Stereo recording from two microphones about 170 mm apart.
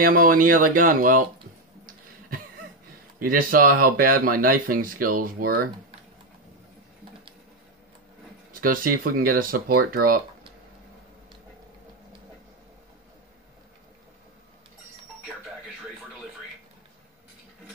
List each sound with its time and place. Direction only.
0.0 s speech: 55° right (ahead or behind)
1.9 s a sound: 55° right (ahead or behind)
3.2 s speech: 55° right (ahead or behind)
8.5 s speech: 55° right (ahead or behind)